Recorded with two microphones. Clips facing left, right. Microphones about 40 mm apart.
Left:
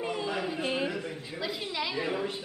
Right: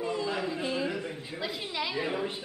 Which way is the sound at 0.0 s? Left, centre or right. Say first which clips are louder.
Right 1 dB; left.